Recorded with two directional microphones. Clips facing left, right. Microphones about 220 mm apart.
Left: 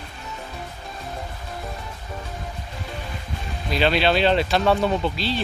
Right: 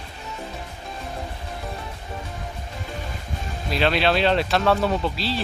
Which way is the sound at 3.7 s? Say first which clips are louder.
Left 1 dB; centre (ahead or behind).